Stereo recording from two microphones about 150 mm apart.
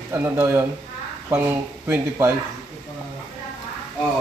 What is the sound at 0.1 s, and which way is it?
Speech, 20° right (ahead or behind).